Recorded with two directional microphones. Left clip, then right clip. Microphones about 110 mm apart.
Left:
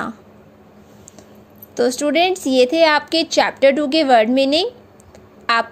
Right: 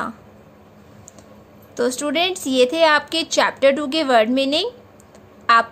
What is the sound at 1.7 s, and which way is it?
A woman's voice, 20° left (ahead or behind).